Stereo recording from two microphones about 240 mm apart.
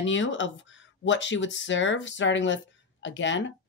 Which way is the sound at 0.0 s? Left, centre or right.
Left.